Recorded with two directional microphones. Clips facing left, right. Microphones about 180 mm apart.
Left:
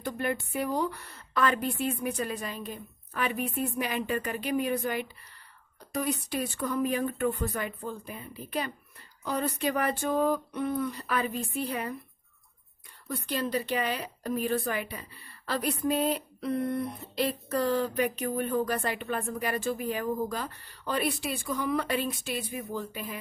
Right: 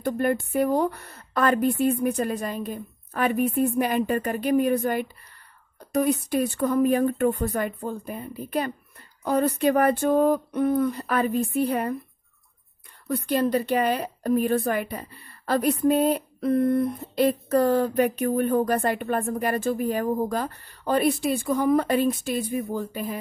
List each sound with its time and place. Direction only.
0.0 s a woman's voice: 50° right (ahead or behind)
13.1 s a woman's voice: 50° right (ahead or behind)